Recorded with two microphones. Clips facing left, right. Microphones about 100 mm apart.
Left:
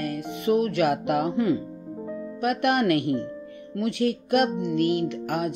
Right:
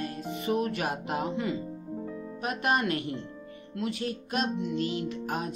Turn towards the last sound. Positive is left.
turn(degrees=70)  # may be behind; listen again after turning